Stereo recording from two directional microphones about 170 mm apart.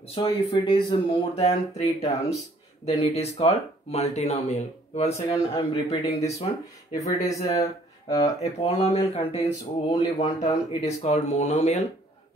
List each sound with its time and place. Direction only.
0.1 s speech: 30° left (ahead or behind)
7.0 s speech: 20° left (ahead or behind)
8.4 s speech: 35° left (ahead or behind)